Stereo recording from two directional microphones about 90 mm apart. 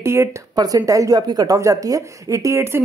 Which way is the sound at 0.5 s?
45° right (ahead or behind).